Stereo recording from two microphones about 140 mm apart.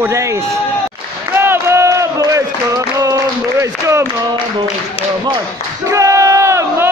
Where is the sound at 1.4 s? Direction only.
20° right (ahead or behind).